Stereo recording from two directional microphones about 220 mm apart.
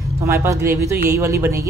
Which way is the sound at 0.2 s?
15° right (ahead or behind).